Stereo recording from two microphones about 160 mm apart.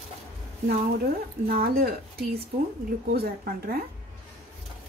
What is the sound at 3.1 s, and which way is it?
Speech, 70° right (ahead or behind).